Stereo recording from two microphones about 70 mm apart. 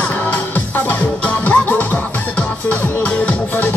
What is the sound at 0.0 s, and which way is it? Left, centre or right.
Music, left.